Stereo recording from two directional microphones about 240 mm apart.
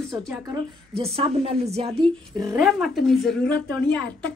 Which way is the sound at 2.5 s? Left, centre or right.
Centre.